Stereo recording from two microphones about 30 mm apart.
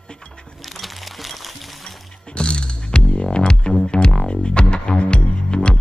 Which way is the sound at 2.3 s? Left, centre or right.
Left.